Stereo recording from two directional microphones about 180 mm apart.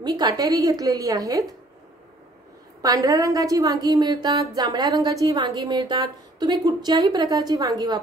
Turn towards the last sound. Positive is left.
turn(degrees=-20)  # may be behind; listen again after turning